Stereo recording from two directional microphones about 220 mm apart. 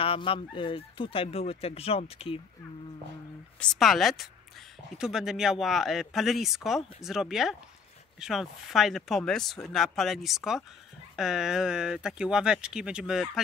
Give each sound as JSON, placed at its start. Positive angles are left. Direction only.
{"t": 0.0, "sound": "speech", "side_deg": 25}
{"t": 3.5, "sound": "a woman's voice", "side_deg": 5}